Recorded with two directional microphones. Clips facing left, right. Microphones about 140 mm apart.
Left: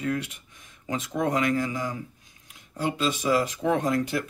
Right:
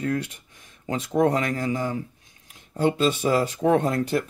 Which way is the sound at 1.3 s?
40° right (ahead or behind).